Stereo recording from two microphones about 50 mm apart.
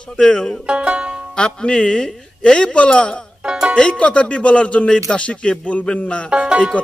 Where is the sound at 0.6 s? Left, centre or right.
Right.